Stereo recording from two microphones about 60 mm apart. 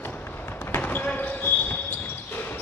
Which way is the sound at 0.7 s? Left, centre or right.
Left.